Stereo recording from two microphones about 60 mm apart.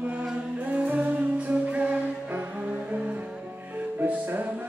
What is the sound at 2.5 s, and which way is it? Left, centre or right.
Music, right.